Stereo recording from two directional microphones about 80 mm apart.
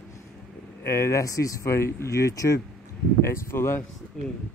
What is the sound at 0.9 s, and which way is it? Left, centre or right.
Speech, left.